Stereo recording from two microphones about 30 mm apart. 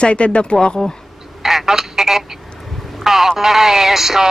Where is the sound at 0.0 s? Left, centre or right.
Left.